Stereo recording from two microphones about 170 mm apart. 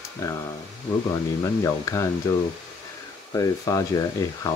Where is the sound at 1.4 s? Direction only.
15° left (ahead or behind).